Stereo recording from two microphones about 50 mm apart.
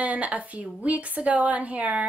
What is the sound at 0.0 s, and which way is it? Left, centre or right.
A woman's voice, right.